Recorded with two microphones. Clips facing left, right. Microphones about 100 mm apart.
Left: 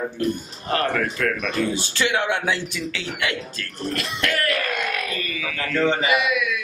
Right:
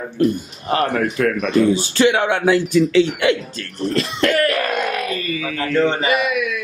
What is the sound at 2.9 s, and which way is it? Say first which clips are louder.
A man's voice: right 12 dB; 25° right (ahead or behind).